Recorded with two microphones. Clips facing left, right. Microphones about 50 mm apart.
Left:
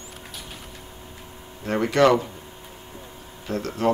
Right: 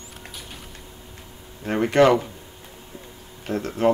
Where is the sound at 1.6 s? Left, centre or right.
Right.